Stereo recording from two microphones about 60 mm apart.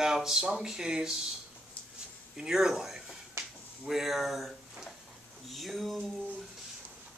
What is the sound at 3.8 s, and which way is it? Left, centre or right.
Speech, centre.